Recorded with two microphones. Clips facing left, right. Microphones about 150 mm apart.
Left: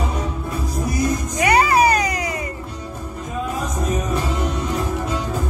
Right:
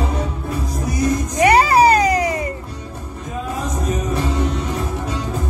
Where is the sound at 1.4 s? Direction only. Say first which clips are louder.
Right 3 dB; 30° right (ahead or behind).